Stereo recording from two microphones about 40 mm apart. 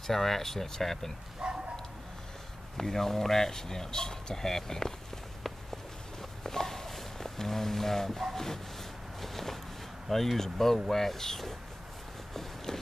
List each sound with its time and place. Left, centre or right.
0.0 s speech: centre
1.4 s bow-wow: right
2.8 s speech: centre
6.4 s a sound: centre
9.2 s walk: centre
10.0 s speech: centre